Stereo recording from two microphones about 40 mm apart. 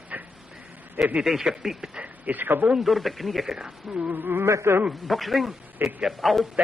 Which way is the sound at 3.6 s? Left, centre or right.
Right.